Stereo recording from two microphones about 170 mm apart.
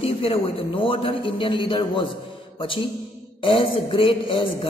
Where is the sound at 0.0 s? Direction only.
35° left (ahead or behind).